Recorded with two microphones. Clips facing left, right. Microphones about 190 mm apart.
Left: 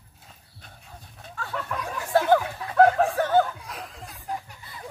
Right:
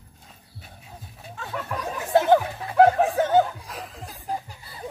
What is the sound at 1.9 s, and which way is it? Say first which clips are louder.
Snicker: right 2 dB; 20° right (ahead or behind).